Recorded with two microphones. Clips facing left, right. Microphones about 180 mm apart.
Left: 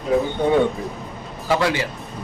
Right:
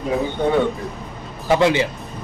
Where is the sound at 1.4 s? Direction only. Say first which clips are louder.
Right 4 dB; 20° right (ahead or behind).